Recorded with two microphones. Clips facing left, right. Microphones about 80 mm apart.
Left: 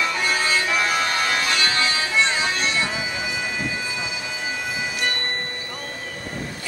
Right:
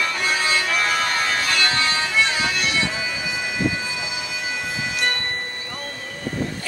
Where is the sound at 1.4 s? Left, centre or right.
Centre.